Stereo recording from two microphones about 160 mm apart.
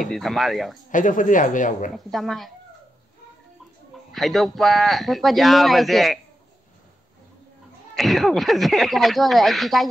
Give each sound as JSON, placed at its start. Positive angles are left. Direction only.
{"t": 0.0, "sound": "a man's voice", "side_deg": 0}
{"t": 0.9, "sound": "a man's voice", "side_deg": 55}
{"t": 2.0, "sound": "a man's voice", "side_deg": 0}
{"t": 4.1, "sound": "a man's voice", "side_deg": 0}
{"t": 7.9, "sound": "a man's voice", "side_deg": 0}